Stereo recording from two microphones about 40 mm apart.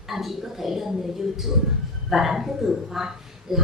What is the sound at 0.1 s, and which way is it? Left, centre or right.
Speech, centre.